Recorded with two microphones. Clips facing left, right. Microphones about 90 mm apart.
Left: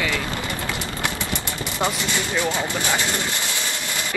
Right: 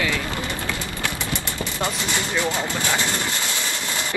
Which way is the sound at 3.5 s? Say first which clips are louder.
Right 1 dB; 20° right (ahead or behind).